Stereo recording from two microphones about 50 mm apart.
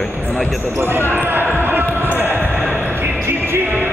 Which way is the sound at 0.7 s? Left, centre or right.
Right.